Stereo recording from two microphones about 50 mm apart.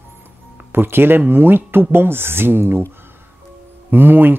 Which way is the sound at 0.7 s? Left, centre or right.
Right.